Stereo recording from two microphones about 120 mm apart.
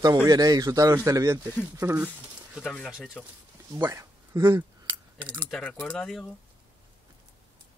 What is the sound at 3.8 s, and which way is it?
Speech, 25° right (ahead or behind).